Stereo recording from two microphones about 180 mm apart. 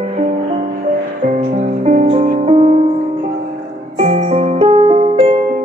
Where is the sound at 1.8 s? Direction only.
40° right (ahead or behind).